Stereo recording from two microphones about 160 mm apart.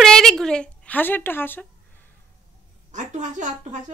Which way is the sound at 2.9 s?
50° right (ahead or behind).